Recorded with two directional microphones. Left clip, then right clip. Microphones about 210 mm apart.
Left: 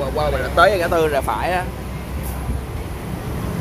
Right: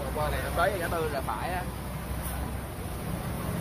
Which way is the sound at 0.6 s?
45° left (ahead or behind).